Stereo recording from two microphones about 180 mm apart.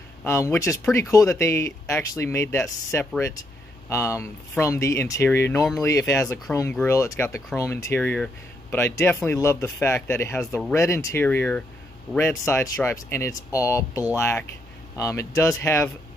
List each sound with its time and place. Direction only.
0.2 s speech: 15° left (ahead or behind)